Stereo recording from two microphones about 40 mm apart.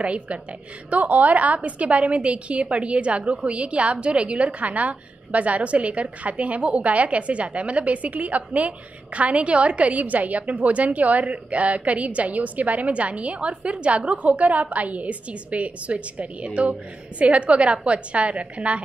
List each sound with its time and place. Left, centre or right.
0.0 s a woman's voice: right